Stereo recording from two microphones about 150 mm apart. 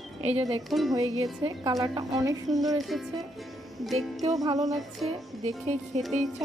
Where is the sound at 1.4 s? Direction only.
25° right (ahead or behind).